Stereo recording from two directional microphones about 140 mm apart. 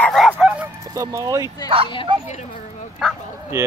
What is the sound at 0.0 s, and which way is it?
Goose, 5° left (ahead or behind).